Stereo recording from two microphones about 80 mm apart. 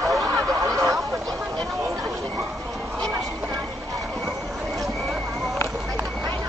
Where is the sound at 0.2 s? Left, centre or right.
Right.